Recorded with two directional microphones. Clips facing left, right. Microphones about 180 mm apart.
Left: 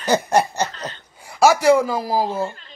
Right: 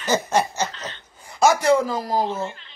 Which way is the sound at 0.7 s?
40° left (ahead or behind).